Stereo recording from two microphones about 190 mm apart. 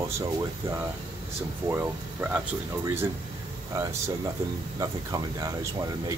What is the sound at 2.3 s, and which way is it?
Speech, 15° right (ahead or behind).